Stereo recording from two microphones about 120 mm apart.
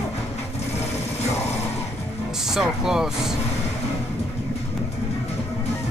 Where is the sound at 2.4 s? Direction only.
5° right (ahead or behind).